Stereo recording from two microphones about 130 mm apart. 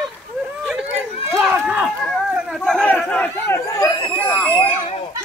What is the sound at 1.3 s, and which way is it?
Run, 10° right (ahead or behind).